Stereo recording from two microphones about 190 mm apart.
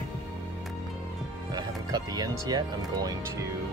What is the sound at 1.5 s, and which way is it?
Speech, 20° right (ahead or behind).